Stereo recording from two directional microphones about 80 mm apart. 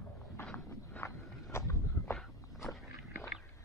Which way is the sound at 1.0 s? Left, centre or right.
Left.